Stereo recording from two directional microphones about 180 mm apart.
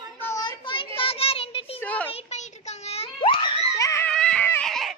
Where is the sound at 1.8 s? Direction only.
10° left (ahead or behind).